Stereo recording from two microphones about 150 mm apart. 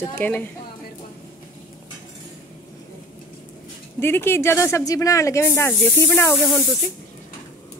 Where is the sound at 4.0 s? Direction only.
15° left (ahead or behind).